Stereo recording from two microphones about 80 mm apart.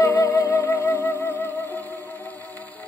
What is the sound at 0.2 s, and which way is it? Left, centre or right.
Music, left.